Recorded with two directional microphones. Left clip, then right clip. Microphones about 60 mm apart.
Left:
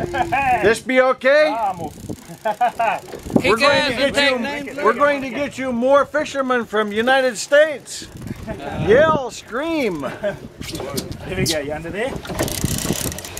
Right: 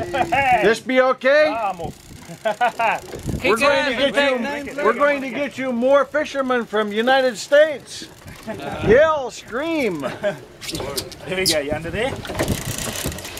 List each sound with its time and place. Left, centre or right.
0.1 s speech: right
0.6 s speech: left
2.4 s speech: right
3.4 s speech: left
3.9 s a man's voice: left
6.4 s speech: left
8.8 s speech: left
9.5 s speech: left
10.2 s speech: right; by 12.4 s centre
12.4 s vehicle: left